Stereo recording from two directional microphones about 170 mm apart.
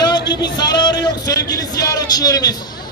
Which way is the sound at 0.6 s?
25° left (ahead or behind).